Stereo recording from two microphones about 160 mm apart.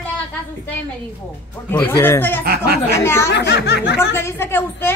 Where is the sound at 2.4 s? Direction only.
75° right (ahead or behind).